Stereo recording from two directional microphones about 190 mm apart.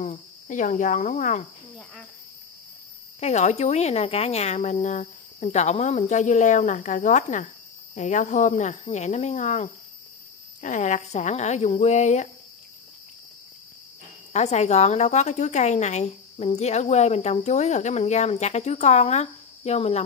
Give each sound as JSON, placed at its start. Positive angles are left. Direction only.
{"t": 0.0, "sound": "speech", "side_deg": 40}
{"t": 3.2, "sound": "a woman's voice", "side_deg": 35}
{"t": 14.3, "sound": "a woman's voice", "side_deg": 35}